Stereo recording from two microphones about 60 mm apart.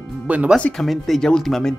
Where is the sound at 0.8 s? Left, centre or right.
Centre.